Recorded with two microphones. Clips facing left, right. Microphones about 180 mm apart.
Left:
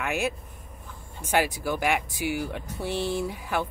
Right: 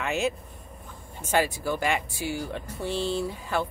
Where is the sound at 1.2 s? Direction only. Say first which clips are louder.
Even; 15° left (ahead or behind).